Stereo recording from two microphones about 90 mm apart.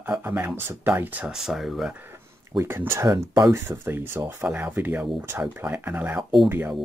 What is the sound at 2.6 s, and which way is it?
Speech, 25° right (ahead or behind).